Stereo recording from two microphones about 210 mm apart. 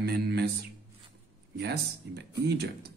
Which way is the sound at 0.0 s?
50° right (ahead or behind).